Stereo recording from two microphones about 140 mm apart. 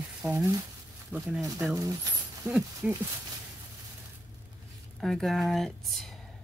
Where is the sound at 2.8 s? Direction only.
10° right (ahead or behind).